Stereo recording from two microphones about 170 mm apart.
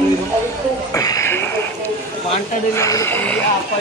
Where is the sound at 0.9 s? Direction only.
20° left (ahead or behind).